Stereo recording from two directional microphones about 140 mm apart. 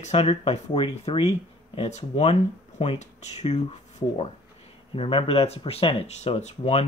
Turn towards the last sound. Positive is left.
turn(degrees=50)  # may be behind; listen again after turning